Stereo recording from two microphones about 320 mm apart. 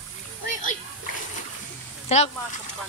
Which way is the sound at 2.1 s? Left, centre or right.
Centre.